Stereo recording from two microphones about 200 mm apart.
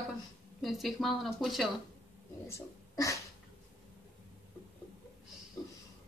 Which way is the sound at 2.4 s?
15° left (ahead or behind).